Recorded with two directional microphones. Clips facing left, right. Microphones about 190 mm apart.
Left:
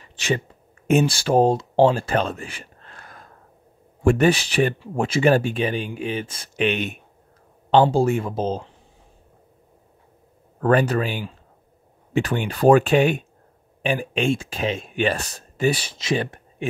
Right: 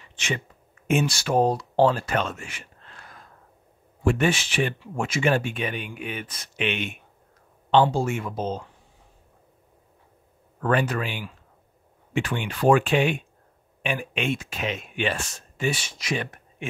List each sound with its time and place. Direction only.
0.0 s a sound: 35° left (ahead or behind)
0.8 s speech: 35° left (ahead or behind)
2.8 s gasp: 45° left (ahead or behind)
4.0 s speech: 45° left (ahead or behind)
10.6 s speech: 40° left (ahead or behind)